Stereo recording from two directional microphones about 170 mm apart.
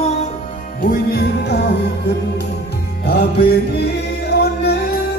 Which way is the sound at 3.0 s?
75° left (ahead or behind).